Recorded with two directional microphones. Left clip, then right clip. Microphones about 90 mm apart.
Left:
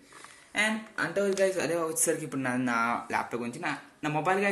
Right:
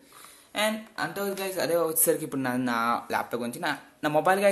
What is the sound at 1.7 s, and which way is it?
A man's voice, 30° right (ahead or behind).